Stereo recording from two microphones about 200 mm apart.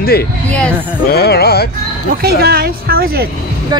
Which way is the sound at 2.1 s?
50° right (ahead or behind).